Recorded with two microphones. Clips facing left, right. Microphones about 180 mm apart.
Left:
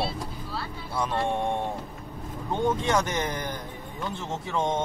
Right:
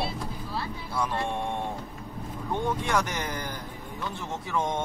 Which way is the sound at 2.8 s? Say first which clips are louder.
Left 3 dB; 20° left (ahead or behind).